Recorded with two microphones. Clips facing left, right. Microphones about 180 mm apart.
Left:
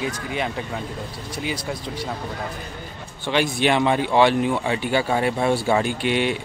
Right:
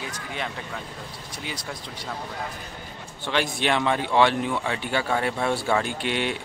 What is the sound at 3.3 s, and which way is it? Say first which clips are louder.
Speech: left 4 dB; 5° left (ahead or behind).